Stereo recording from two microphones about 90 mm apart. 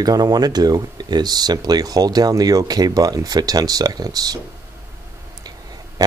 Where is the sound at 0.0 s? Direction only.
45° right (ahead or behind).